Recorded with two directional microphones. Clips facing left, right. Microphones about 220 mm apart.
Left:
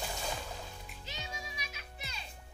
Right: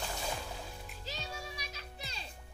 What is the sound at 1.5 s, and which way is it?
Music, 35° right (ahead or behind).